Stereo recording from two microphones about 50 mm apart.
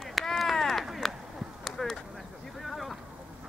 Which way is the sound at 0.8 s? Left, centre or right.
Centre.